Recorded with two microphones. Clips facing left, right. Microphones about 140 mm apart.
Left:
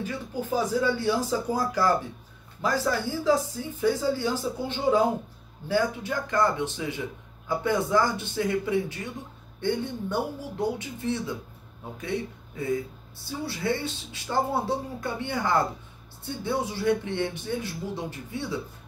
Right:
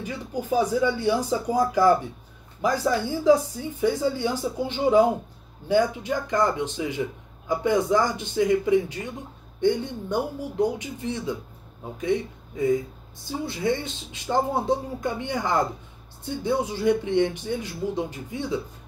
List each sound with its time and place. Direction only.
0.0 s a man's voice: 15° right (ahead or behind)